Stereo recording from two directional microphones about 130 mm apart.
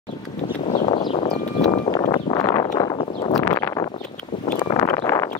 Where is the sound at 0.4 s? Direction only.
65° left (ahead or behind).